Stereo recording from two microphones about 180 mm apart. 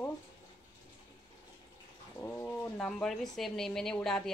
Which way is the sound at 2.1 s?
10° left (ahead or behind).